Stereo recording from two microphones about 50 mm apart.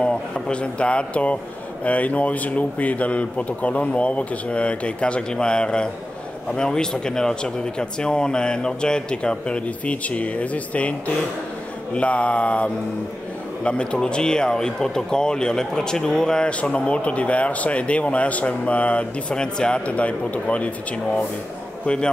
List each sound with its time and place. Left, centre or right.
0.0 s speech: left
21.8 s speech: centre